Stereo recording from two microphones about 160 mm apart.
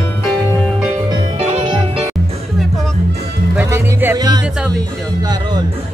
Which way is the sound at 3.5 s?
15° right (ahead or behind).